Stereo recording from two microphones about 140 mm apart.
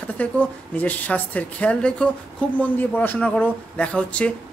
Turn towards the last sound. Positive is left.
turn(degrees=10)  # may be behind; listen again after turning